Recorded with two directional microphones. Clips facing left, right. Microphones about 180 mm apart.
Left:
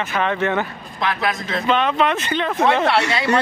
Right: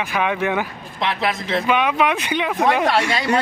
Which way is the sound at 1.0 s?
25° right (ahead or behind).